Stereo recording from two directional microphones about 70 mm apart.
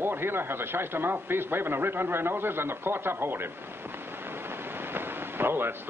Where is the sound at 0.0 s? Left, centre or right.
Right.